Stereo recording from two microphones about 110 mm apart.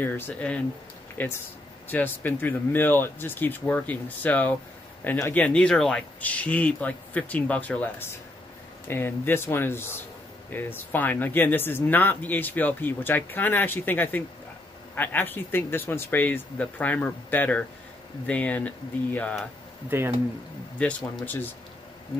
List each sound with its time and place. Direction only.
0.0 s speech: 15° left (ahead or behind)
19.9 s speech: 20° right (ahead or behind)
20.8 s speech: 10° left (ahead or behind)